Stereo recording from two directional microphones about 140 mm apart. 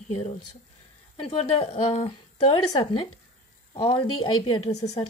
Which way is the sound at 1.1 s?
45° left (ahead or behind).